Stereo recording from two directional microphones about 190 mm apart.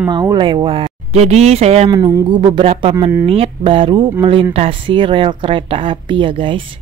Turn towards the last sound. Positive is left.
turn(degrees=-25)  # may be behind; listen again after turning